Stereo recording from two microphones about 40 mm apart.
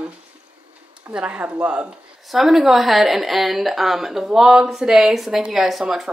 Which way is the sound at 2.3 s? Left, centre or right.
Centre.